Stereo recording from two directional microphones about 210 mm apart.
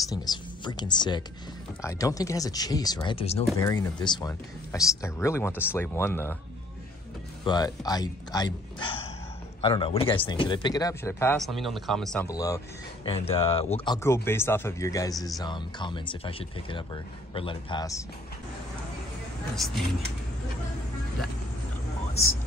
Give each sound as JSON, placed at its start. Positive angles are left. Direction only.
{"t": 0.1, "sound": "speech", "side_deg": 20}
{"t": 3.5, "sound": "speech", "side_deg": 15}
{"t": 7.4, "sound": "speech", "side_deg": 20}
{"t": 11.3, "sound": "speech", "side_deg": 0}
{"t": 12.3, "sound": "speech", "side_deg": 15}
{"t": 13.1, "sound": "speech", "side_deg": 25}
{"t": 13.9, "sound": "speech", "side_deg": 10}
{"t": 19.5, "sound": "speech", "side_deg": 0}